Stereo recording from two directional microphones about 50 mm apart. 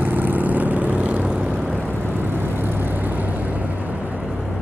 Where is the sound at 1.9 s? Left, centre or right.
Right.